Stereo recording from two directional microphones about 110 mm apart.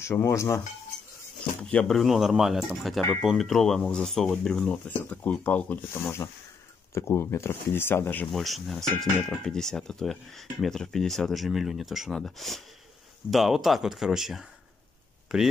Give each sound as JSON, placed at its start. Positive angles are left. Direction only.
{"t": 0.0, "sound": "speech", "side_deg": 25}
{"t": 1.6, "sound": "speech", "side_deg": 10}
{"t": 6.9, "sound": "speech", "side_deg": 25}
{"t": 8.3, "sound": "speech", "side_deg": 0}